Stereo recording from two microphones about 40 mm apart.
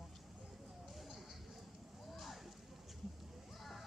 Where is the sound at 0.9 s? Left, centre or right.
Centre.